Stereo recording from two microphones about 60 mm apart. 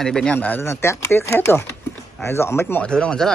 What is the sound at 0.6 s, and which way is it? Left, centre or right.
Speech, left.